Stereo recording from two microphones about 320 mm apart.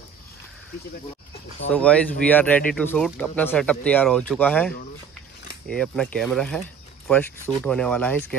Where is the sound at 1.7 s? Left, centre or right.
Centre.